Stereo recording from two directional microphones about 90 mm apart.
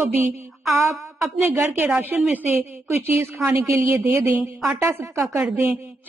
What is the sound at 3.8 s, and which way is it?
A woman's voice, 35° right (ahead or behind).